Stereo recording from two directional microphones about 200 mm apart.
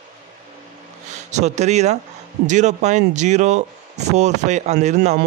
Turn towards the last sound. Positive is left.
turn(degrees=-35)  # may be behind; listen again after turning